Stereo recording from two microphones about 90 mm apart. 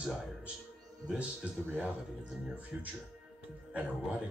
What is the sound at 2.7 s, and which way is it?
Speech, 15° right (ahead or behind).